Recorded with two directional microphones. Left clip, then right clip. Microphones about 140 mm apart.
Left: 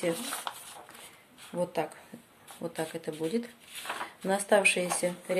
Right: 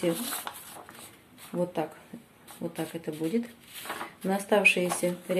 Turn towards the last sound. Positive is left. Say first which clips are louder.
# right 1 dB
turn(degrees=30)  # may be behind; listen again after turning